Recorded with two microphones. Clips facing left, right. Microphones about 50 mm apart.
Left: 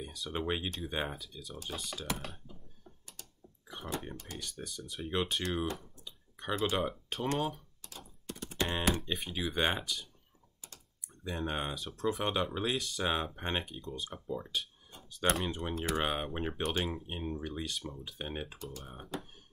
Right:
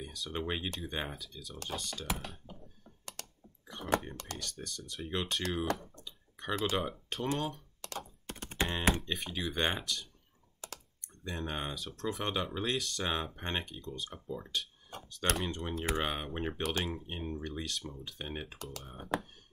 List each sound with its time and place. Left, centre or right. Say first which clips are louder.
0.0 s speech: left 1 dB; centre
3.2 s typing: right 6 dB; right
3.6 s a sound: right 1 dB; centre
4.4 s speech: even; centre
6.0 s a sound: left 1 dB; centre
7.3 s speech: left 2 dB; centre
7.8 s computer keyboard: right 11 dB; right
8.3 s typing: left 1 dB; right
8.6 s speech: right 1 dB; centre
14.9 s a sound: right 9 dB; right
15.3 s speech: left 1 dB; centre